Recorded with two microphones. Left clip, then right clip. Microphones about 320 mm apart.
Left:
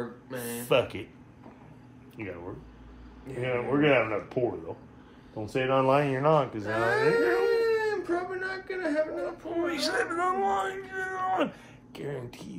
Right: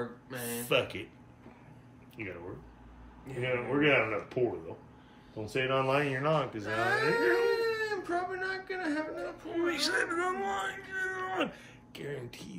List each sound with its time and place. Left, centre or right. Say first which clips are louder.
0.3 s a sound: left 7 dB; centre
0.7 s speech: left 5 dB; centre
3.4 s speech: left 3 dB; centre
6.6 s speech: left 4 dB; centre
9.5 s speech: left 1 dB; centre